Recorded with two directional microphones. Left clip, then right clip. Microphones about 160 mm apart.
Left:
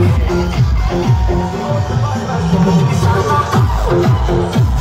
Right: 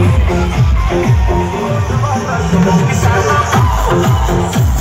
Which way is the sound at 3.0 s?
70° left (ahead or behind).